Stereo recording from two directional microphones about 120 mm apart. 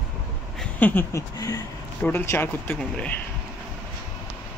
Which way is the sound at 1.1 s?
30° left (ahead or behind).